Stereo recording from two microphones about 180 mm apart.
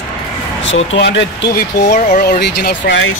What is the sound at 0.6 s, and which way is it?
Speech, 90° left.